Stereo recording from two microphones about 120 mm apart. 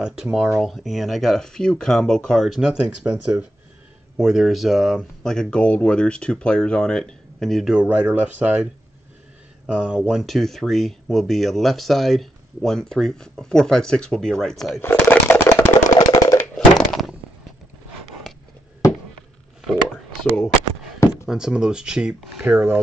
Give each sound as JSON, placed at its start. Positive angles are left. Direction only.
{"t": 0.0, "sound": "speech", "side_deg": -5}
{"t": 9.7, "sound": "speech", "side_deg": -10}
{"t": 14.8, "sound": "chopping", "side_deg": 20}
{"t": 16.5, "sound": "a sound", "side_deg": 5}
{"t": 21.3, "sound": "speech", "side_deg": -5}